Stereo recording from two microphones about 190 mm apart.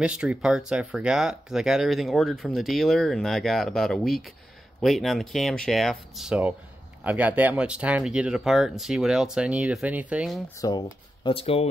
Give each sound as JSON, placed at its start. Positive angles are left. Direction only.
{"t": 0.0, "sound": "speech", "side_deg": -5}
{"t": 10.6, "sound": "speech", "side_deg": 25}